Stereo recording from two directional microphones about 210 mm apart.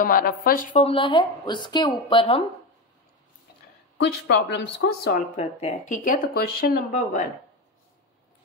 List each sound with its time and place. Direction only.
0.0 s speech: 45° left (ahead or behind)
0.8 s speech: 25° left (ahead or behind)
4.3 s speech: 55° left (ahead or behind)
5.3 s speech: 30° left (ahead or behind)